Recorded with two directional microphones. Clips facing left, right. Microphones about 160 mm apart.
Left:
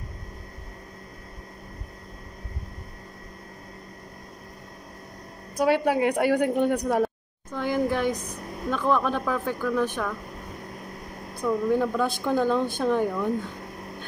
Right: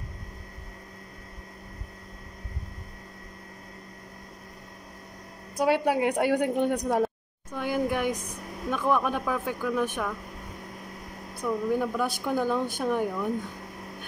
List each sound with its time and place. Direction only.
5.6 s speech: 15° right (ahead or behind)
11.4 s speech: 10° right (ahead or behind)